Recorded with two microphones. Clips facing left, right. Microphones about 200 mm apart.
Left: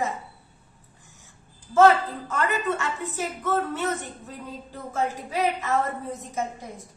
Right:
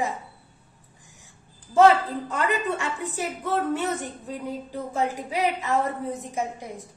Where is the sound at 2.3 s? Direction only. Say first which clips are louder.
Left 1 dB; 15° right (ahead or behind).